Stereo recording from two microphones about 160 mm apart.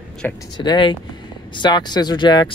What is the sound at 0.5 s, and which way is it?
Speech, 30° left (ahead or behind).